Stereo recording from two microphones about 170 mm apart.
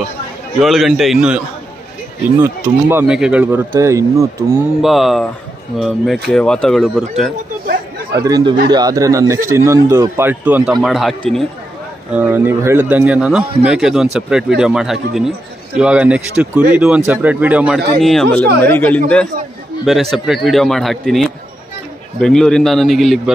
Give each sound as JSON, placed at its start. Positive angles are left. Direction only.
{"t": 0.6, "sound": "a man's voice", "side_deg": 0}
{"t": 2.2, "sound": "speech", "side_deg": -15}
{"t": 4.8, "sound": "a man's voice", "side_deg": 0}
{"t": 7.6, "sound": "chatter", "side_deg": -60}
{"t": 8.2, "sound": "a man's voice", "side_deg": -20}
{"t": 12.1, "sound": "a man's voice", "side_deg": -10}